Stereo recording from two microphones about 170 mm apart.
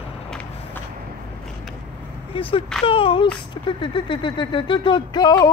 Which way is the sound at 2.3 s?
30° left (ahead or behind).